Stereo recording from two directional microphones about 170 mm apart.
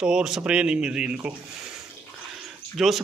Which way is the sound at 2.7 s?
Centre (ahead or behind).